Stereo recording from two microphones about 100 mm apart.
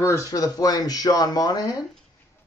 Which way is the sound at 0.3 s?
40° left (ahead or behind).